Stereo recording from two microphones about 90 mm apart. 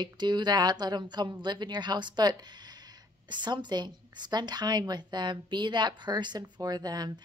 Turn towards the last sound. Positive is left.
turn(degrees=-50)  # may be behind; listen again after turning